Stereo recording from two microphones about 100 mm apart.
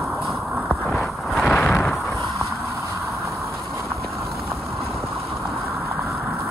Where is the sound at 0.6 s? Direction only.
5° left (ahead or behind).